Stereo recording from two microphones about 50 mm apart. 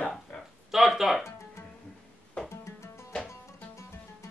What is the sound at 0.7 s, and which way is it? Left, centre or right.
Speech, centre.